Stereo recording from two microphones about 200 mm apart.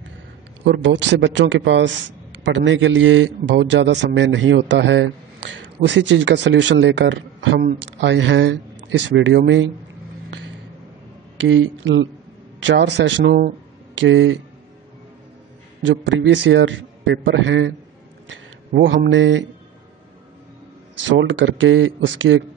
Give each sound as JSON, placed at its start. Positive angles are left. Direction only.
{"t": 0.7, "sound": "a man's voice", "side_deg": -65}
{"t": 11.4, "sound": "a man's voice", "side_deg": -70}
{"t": 13.9, "sound": "a man's voice", "side_deg": -70}
{"t": 15.8, "sound": "a man's voice", "side_deg": -65}
{"t": 21.2, "sound": "a man's voice", "side_deg": -70}